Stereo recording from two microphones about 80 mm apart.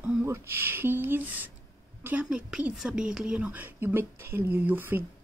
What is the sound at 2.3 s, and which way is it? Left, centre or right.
A woman's voice, centre.